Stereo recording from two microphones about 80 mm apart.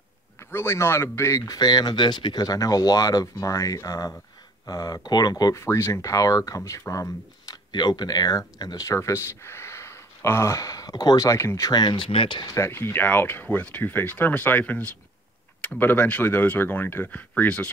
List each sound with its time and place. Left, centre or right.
0.4 s speech: left
1.5 s speech: left
2.4 s speech: left
5.6 s speech: left
7.7 s speech: left
8.8 s speech: left
11.7 s speech: left
12.4 s speech: left; by 17.6 s centre